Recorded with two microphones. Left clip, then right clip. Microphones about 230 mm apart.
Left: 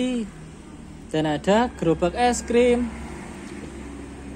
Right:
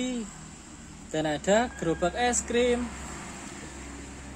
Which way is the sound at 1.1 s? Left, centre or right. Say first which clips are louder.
Left 4 dB; centre.